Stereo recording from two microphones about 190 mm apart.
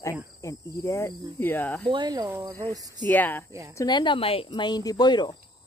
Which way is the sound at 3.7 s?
20° left (ahead or behind).